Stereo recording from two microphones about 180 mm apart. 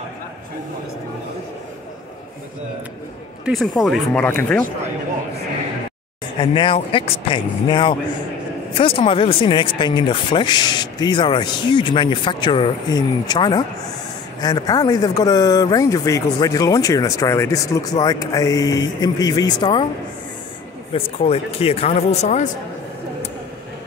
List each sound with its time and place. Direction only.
3.4 s speech: centre (ahead or behind)
6.4 s speech: 25° left (ahead or behind)
20.9 s speech: 30° left (ahead or behind)